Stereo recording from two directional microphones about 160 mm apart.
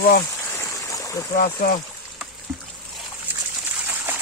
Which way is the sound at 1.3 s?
60° left (ahead or behind).